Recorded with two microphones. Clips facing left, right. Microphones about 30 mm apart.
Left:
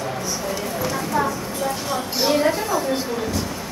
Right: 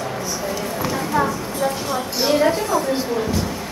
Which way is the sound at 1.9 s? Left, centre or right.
Centre.